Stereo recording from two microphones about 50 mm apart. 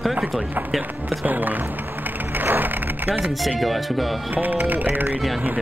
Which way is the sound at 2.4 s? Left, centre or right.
Right.